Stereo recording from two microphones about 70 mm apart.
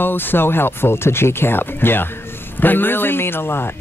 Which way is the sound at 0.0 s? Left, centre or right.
Left.